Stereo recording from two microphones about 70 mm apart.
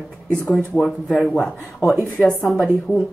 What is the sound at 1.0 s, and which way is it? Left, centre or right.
A woman's voice, centre.